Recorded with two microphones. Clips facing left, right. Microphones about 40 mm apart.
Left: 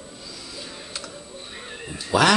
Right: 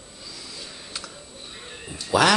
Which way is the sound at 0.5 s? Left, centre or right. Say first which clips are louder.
Left 2 dB; centre.